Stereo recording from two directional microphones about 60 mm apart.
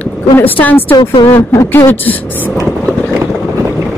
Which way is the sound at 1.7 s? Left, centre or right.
Left.